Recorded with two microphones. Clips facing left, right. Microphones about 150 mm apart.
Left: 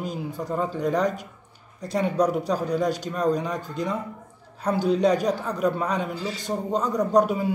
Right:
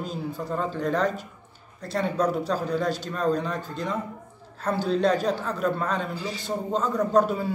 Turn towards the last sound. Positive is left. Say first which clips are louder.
# left 1 dB
turn(degrees=15)  # may be behind; listen again after turning